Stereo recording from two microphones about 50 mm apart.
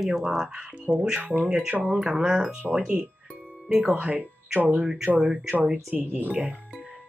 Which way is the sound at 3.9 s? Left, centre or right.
Right.